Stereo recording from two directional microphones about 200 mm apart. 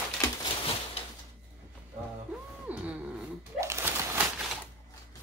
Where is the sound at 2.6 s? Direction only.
10° right (ahead or behind).